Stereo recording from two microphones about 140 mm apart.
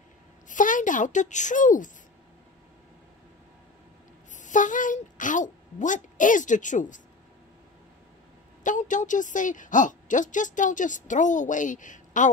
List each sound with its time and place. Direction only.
0.5 s a child's voice: 70° left (ahead or behind)
4.4 s speech: 65° left (ahead or behind)
8.6 s a woman's voice: 65° left (ahead or behind)